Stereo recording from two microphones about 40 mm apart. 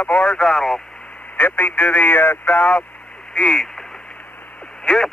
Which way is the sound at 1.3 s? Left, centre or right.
Left.